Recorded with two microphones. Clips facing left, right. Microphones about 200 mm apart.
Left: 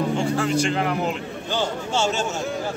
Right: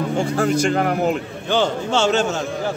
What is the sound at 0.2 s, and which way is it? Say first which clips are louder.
A man's voice: right 3 dB; 45° right (ahead or behind).